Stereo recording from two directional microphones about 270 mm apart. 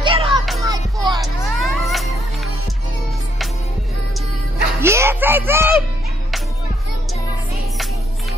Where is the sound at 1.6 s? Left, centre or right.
Centre.